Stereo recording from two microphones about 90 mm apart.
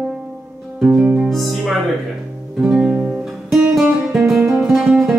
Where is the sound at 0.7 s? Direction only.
10° right (ahead or behind).